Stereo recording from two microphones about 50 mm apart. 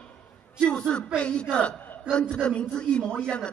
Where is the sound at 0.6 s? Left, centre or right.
Centre.